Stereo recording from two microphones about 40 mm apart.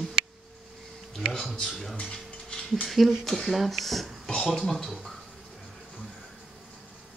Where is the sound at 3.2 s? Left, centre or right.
Centre.